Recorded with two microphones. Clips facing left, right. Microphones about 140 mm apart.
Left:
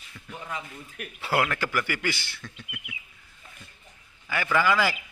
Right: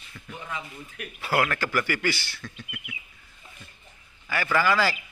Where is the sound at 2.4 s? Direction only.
5° left (ahead or behind).